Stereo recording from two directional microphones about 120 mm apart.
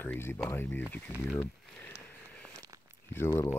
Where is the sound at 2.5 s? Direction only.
25° right (ahead or behind).